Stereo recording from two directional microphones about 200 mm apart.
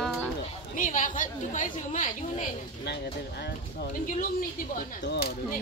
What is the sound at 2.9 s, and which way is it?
Speech, 55° left (ahead or behind).